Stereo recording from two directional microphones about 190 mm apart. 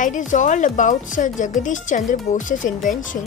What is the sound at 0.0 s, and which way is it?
Speech, 40° left (ahead or behind).